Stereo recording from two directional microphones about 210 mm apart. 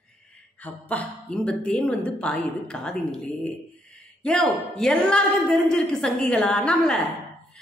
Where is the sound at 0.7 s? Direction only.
5° left (ahead or behind).